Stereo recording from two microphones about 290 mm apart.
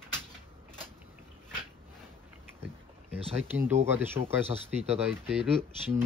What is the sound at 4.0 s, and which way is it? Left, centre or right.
Speech, centre.